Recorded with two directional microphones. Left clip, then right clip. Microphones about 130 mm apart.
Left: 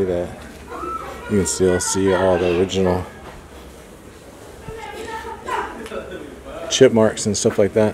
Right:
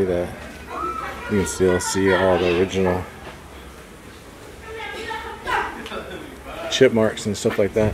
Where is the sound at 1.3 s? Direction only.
15° left (ahead or behind).